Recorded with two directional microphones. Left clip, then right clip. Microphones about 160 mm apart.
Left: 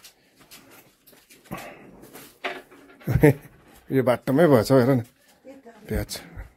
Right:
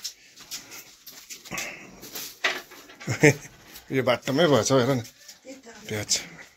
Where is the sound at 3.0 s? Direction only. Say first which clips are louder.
Even; 25° left (ahead or behind); by 5.0 s 55° left (ahead or behind).